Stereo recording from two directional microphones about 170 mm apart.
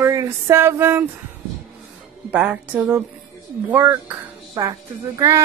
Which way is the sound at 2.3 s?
10° right (ahead or behind).